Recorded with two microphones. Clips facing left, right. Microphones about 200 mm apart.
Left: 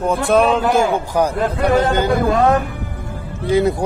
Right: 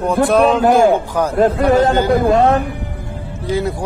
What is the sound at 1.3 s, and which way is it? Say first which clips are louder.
Speech: right 9 dB; 40° right (ahead or behind).